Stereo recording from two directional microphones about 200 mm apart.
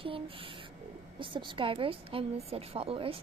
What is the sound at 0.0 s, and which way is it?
A child's voice, 25° right (ahead or behind).